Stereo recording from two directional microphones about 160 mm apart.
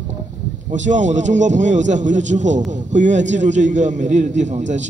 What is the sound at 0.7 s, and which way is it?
A man's voice, 50° right (ahead or behind).